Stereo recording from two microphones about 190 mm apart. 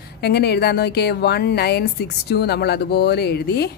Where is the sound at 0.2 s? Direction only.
60° left (ahead or behind).